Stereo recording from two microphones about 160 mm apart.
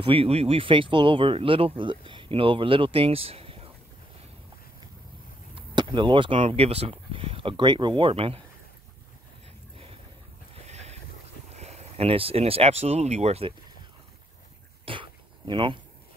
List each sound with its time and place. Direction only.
0.0 s speech: 35° right (ahead or behind)
5.5 s speech: 30° right (ahead or behind)
10.5 s boat: 40° right (ahead or behind)
11.5 s speech: 45° right (ahead or behind)
14.9 s dog: 30° right (ahead or behind)